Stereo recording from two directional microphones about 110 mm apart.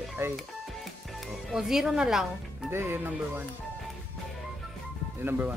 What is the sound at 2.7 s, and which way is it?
Speech, 20° right (ahead or behind).